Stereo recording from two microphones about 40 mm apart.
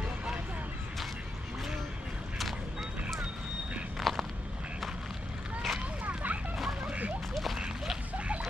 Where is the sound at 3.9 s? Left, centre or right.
Centre.